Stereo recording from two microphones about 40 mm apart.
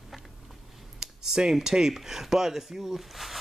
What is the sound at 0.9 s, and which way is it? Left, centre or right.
Speech, centre.